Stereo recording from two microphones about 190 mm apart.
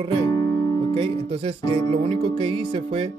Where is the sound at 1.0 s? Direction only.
30° right (ahead or behind).